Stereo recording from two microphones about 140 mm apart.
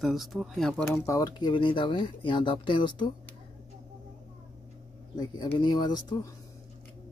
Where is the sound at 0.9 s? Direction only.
25° left (ahead or behind).